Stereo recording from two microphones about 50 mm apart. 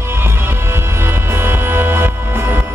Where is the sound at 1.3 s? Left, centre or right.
Right.